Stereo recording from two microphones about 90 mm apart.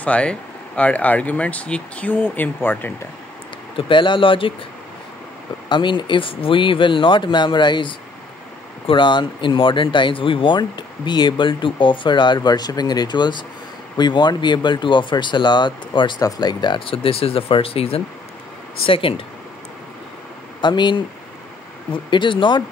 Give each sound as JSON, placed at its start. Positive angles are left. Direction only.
{"t": 0.0, "sound": "speech", "side_deg": 15}
{"t": 3.7, "sound": "speech", "side_deg": 65}
{"t": 5.7, "sound": "speech", "side_deg": 60}
{"t": 16.2, "sound": "speech", "side_deg": 45}
{"t": 20.6, "sound": "speech", "side_deg": 60}